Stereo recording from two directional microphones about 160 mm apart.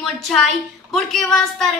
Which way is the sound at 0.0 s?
Centre (ahead or behind).